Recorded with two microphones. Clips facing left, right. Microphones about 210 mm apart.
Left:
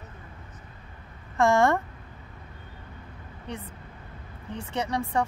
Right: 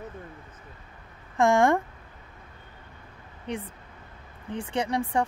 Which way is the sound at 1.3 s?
15° right (ahead or behind).